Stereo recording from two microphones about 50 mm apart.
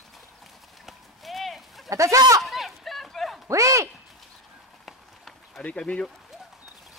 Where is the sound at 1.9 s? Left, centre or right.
Right.